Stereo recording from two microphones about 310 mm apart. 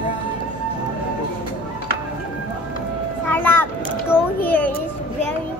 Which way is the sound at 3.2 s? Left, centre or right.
Centre.